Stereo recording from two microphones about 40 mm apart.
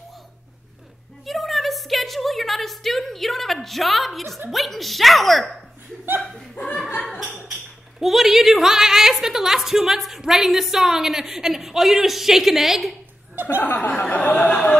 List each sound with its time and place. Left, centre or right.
1.2 s a sound: centre
4.5 s speech: centre
7.1 s a sound: centre
8.0 s a woman's voice: centre
13.4 s chuckle: right
13.7 s speech: left